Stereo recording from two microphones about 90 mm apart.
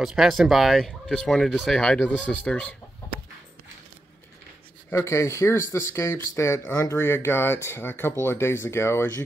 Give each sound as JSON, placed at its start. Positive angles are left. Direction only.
{"t": 0.0, "sound": "speech", "side_deg": -5}
{"t": 4.9, "sound": "speech", "side_deg": 30}